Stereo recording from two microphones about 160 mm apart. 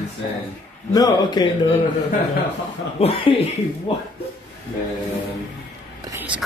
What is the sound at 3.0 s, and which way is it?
Speech, 35° left (ahead or behind).